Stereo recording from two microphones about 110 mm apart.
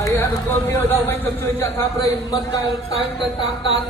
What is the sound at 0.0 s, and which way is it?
Speech, 25° left (ahead or behind).